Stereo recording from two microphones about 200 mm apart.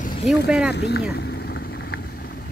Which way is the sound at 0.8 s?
55° left (ahead or behind).